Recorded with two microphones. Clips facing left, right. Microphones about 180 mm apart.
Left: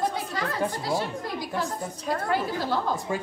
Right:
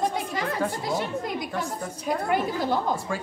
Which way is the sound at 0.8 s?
20° right (ahead or behind).